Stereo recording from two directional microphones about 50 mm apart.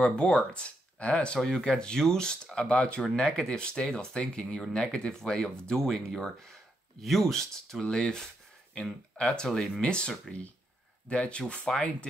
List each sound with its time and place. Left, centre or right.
0.0 s speech: left
1.4 s speech: centre
9.2 s speech: centre